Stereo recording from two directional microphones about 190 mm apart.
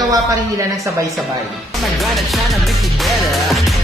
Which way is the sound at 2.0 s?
Centre (ahead or behind).